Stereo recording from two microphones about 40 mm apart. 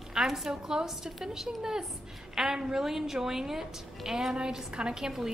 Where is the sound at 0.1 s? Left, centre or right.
Centre.